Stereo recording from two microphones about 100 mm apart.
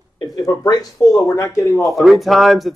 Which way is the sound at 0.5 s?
40° left (ahead or behind).